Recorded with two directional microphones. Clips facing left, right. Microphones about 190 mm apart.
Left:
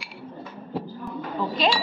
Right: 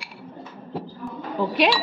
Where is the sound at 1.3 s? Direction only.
70° right (ahead or behind).